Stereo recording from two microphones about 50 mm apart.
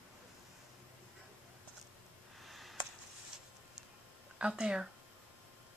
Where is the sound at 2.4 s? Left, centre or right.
Centre.